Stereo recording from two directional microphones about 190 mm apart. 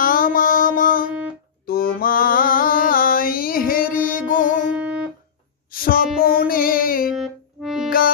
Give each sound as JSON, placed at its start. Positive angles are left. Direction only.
{"t": 0.0, "sound": "music", "side_deg": 45}
{"t": 1.7, "sound": "mantra", "side_deg": 50}
{"t": 4.7, "sound": "music", "side_deg": -5}
{"t": 5.7, "sound": "music", "side_deg": 50}
{"t": 7.2, "sound": "music", "side_deg": 0}